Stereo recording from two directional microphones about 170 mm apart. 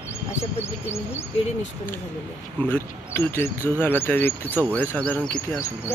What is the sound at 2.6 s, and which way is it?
Speech, 10° left (ahead or behind).